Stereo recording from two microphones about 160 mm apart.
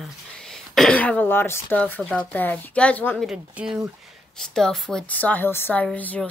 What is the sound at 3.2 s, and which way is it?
A woman's voice, 5° right (ahead or behind).